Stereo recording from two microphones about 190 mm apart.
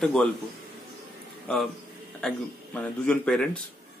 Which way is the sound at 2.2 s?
5° left (ahead or behind).